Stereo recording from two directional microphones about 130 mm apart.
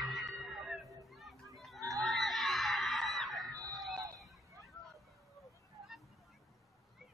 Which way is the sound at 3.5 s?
30° right (ahead or behind).